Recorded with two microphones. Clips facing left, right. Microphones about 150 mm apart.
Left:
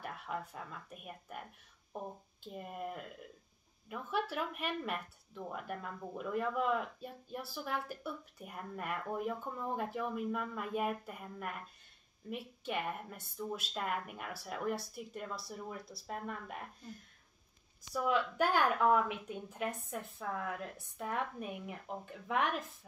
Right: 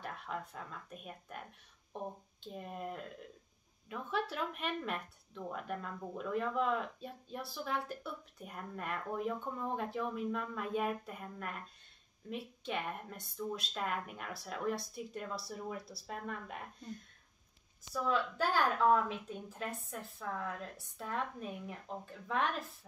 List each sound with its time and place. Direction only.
0.0 s speech: 5° left (ahead or behind)
2.4 s speech: 5° left (ahead or behind)
17.8 s a woman's voice: 15° left (ahead or behind)